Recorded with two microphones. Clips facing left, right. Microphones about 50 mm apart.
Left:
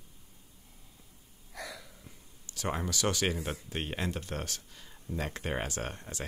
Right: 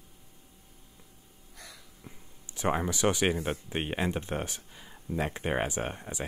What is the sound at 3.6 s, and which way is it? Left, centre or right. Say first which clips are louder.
Speech: right 4 dB; centre.